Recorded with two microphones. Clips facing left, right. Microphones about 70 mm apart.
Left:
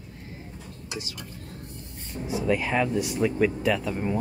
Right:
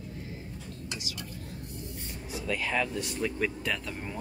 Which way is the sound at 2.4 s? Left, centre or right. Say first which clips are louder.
Left 6 dB; left.